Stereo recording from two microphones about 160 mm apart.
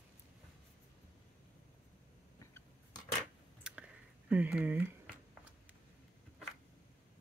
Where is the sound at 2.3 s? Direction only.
20° left (ahead or behind).